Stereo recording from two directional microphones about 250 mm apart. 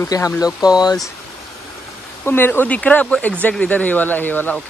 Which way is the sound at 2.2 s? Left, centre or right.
Centre.